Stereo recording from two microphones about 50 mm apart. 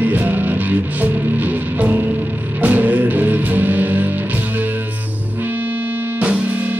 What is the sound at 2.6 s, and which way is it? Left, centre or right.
Music, right.